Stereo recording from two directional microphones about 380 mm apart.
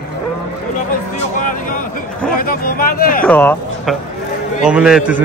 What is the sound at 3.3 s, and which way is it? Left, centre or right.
A man's voice, centre.